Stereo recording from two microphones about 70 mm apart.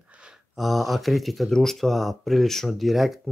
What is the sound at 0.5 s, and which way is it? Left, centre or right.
Speech, centre.